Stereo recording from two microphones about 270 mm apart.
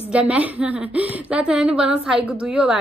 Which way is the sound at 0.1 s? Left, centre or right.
Centre.